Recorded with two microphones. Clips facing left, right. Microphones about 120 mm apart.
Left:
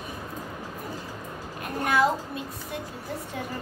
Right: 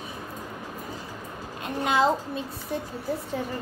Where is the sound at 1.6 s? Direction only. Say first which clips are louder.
Even; 25° right (ahead or behind).